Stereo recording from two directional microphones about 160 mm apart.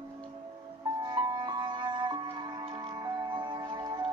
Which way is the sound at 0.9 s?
25° right (ahead or behind).